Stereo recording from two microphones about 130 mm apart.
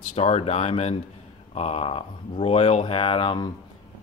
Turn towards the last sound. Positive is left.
turn(degrees=45)  # may be behind; listen again after turning